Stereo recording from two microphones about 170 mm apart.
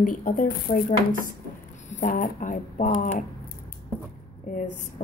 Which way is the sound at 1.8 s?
50° left (ahead or behind).